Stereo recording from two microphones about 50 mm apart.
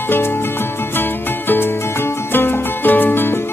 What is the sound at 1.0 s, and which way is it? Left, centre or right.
Music, left.